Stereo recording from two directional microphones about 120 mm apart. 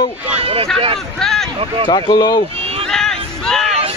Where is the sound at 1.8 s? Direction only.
40° left (ahead or behind).